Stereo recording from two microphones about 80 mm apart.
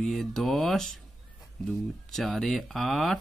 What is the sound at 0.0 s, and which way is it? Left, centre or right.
Speech, centre.